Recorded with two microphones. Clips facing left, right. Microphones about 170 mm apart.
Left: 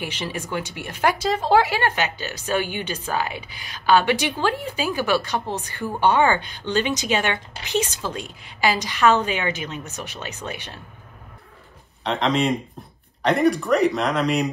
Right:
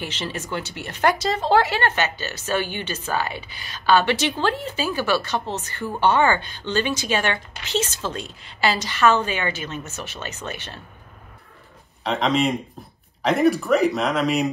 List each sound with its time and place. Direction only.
0.0 s speech: 10° left (ahead or behind)
12.0 s speech: centre (ahead or behind)